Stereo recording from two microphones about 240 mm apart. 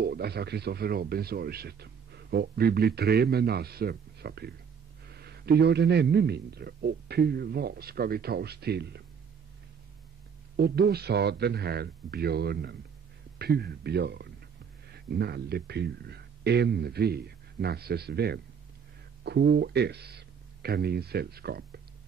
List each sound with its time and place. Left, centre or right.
0.0 s speech: right
10.5 s speech: right